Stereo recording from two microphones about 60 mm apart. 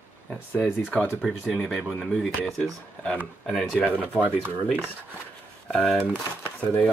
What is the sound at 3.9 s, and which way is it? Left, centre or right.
Speech, right.